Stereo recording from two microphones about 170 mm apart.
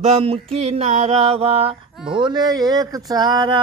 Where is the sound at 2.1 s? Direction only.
25° right (ahead or behind).